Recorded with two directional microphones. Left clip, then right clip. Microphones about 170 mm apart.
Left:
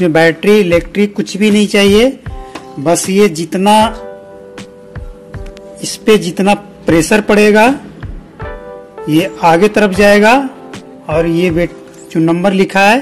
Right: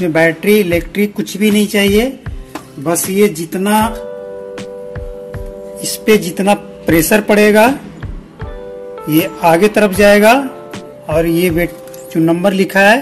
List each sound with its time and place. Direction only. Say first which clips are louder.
0.0 s speech: left 3 dB; 30° left (ahead or behind)
3.2 s speech: left 2 dB; 40° left (ahead or behind)
5.8 s speech: left 2 dB; 20° left (ahead or behind)
9.0 s speech: left 2 dB; 20° left (ahead or behind)